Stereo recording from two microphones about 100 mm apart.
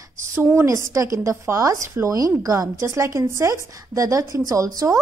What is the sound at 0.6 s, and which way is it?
A woman's voice, 30° right (ahead or behind).